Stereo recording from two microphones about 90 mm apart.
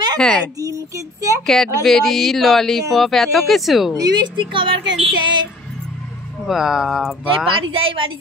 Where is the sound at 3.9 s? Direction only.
50° right (ahead or behind); by 4.7 s 65° right (ahead or behind).